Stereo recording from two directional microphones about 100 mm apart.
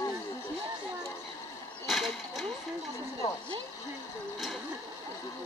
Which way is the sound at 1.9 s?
Centre (ahead or behind).